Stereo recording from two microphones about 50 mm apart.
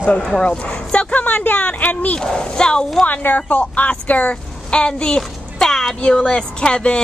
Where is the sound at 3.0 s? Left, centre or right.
Left; by 5.9 s centre.